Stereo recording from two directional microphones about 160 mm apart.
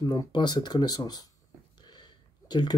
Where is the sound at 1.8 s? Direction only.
25° left (ahead or behind).